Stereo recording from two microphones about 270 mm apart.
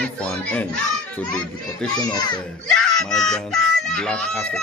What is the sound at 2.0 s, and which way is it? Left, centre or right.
Speech, centre.